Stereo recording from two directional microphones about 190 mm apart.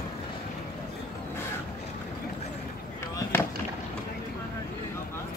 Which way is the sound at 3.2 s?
10° left (ahead or behind).